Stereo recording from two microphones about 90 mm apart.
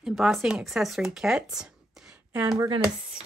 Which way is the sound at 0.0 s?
5° right (ahead or behind).